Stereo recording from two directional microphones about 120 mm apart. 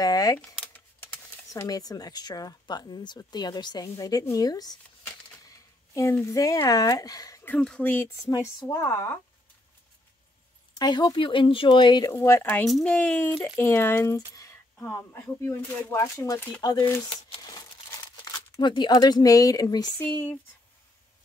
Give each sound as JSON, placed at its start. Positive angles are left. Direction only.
{"t": 0.0, "sound": "speech", "side_deg": 30}
{"t": 1.5, "sound": "speech", "side_deg": 30}
{"t": 7.6, "sound": "speech", "side_deg": 10}
{"t": 8.3, "sound": "speech", "side_deg": 30}
{"t": 10.8, "sound": "speech", "side_deg": 35}
{"t": 16.6, "sound": "speech", "side_deg": 30}
{"t": 17.4, "sound": "crumpling", "side_deg": 30}
{"t": 18.9, "sound": "speech", "side_deg": 35}
{"t": 20.0, "sound": "speech", "side_deg": 15}